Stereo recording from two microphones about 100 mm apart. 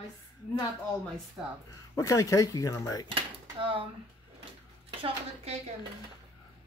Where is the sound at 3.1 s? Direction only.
60° right (ahead or behind).